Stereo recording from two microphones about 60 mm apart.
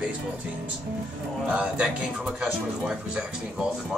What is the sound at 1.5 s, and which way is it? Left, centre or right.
Speech, centre.